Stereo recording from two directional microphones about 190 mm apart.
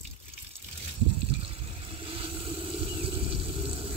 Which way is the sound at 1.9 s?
30° right (ahead or behind).